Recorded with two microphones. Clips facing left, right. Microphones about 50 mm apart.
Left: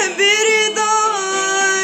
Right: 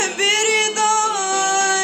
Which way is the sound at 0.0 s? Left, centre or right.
Left.